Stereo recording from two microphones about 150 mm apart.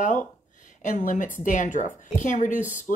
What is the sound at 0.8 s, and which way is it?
A woman's voice, 60° left (ahead or behind).